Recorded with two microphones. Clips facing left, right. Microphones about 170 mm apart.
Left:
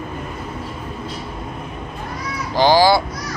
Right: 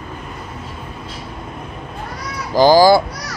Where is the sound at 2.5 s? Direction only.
40° right (ahead or behind).